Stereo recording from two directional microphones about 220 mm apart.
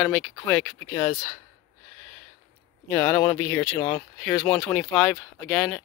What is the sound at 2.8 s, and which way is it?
Speech, 5° left (ahead or behind).